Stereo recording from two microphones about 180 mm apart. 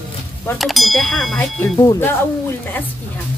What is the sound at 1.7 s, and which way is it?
Speech, 20° left (ahead or behind).